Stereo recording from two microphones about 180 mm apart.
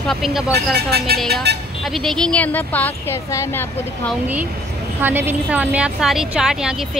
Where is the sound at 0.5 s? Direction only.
65° right (ahead or behind).